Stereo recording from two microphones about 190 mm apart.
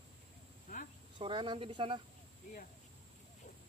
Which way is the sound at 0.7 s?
45° left (ahead or behind).